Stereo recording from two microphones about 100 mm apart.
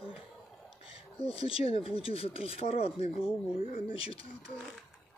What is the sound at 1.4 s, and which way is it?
Speech, 70° left (ahead or behind).